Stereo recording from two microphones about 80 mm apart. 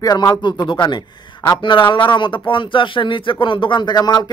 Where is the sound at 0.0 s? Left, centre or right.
Left.